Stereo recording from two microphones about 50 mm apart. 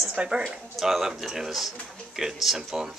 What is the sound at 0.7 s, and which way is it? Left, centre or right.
A woman's voice, centre.